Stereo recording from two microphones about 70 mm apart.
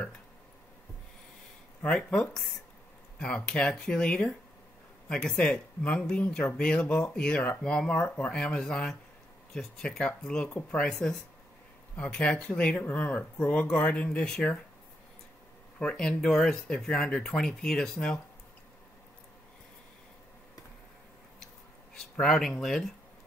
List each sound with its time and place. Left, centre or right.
2.0 s speech: centre
15.8 s speech: centre
21.9 s speech: centre